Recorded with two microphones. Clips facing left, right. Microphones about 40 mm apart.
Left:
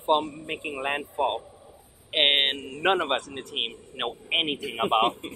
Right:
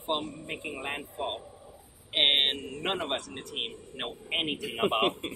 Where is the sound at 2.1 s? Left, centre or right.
Left.